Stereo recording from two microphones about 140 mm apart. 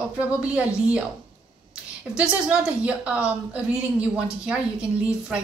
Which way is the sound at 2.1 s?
5° right (ahead or behind).